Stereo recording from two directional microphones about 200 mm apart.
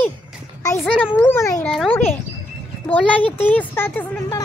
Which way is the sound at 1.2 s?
10° left (ahead or behind).